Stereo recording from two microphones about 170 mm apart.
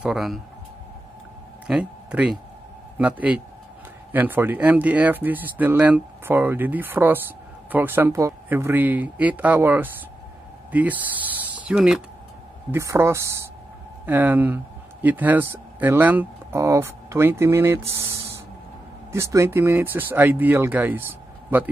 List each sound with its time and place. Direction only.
0.0 s speech: centre (ahead or behind)
1.7 s speech: 5° right (ahead or behind)
12.7 s speech: 15° right (ahead or behind)